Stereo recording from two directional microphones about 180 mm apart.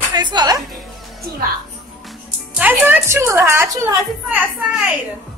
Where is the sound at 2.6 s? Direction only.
10° right (ahead or behind).